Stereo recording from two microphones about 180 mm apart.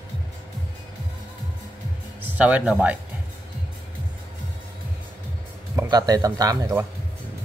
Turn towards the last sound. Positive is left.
turn(degrees=-20)  # may be behind; listen again after turning